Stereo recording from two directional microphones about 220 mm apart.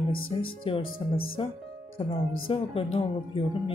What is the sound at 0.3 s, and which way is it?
Music, 25° left (ahead or behind).